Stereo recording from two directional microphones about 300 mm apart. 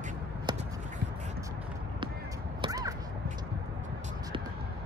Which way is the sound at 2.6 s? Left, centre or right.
Centre.